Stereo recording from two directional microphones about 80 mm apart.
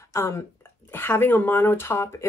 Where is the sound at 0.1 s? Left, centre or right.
Left.